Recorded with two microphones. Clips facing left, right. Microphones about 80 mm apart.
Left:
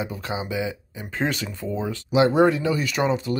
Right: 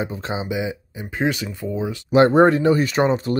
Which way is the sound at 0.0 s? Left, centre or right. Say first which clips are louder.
Right 3 dB; right.